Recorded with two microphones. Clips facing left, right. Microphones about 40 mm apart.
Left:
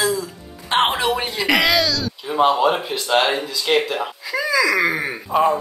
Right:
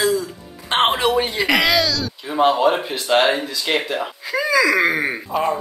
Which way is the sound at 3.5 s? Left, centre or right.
Centre.